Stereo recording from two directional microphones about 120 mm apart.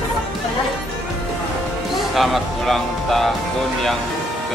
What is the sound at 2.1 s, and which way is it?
Speech, centre (ahead or behind).